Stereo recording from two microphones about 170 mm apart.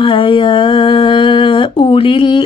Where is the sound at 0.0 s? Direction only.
30° left (ahead or behind).